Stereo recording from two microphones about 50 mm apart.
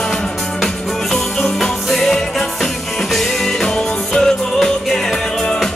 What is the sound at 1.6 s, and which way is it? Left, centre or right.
Music, centre.